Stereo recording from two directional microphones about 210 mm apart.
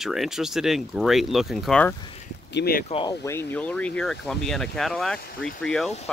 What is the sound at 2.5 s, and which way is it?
Speech, 45° left (ahead or behind).